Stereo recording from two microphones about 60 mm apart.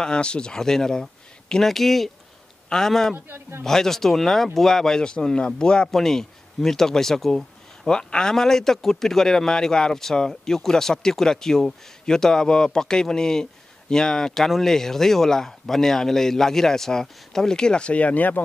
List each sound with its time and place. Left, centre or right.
0.0 s speech: centre
3.3 s speech: right
3.6 s speech: centre; by 18.4 s left